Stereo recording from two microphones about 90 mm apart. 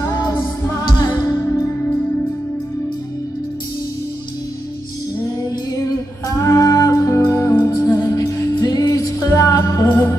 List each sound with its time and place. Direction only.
0.0 s music: 35° left (ahead or behind); by 1.3 s 50° left (ahead or behind)
5.7 s music: 35° left (ahead or behind)
9.8 s music: 25° left (ahead or behind)